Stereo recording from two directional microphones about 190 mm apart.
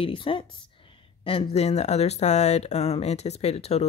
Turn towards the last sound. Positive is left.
turn(degrees=35)  # may be behind; listen again after turning